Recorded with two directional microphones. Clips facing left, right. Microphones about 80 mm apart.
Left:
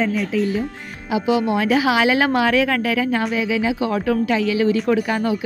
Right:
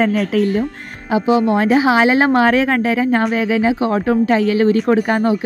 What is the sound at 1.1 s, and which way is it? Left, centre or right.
Speech, right.